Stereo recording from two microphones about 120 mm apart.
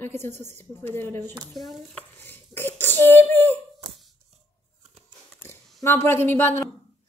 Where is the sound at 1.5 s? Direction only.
Centre (ahead or behind).